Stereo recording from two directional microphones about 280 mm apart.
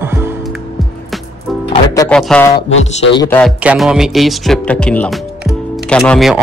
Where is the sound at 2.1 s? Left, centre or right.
Centre.